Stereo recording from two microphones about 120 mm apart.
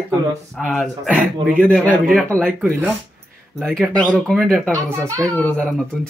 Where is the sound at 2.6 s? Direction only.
20° right (ahead or behind).